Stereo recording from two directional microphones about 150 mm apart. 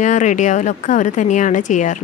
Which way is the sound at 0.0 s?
55° left (ahead or behind).